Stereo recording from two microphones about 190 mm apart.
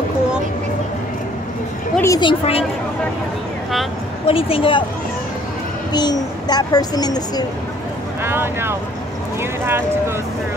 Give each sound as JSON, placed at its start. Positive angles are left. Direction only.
{"t": 2.0, "sound": "speech", "side_deg": 20}
{"t": 4.3, "sound": "speech", "side_deg": 30}
{"t": 5.9, "sound": "speech", "side_deg": 20}
{"t": 8.2, "sound": "speech", "side_deg": -10}